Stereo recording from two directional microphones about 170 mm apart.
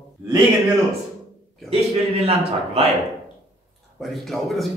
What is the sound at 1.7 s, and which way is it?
A man's voice, 35° right (ahead or behind).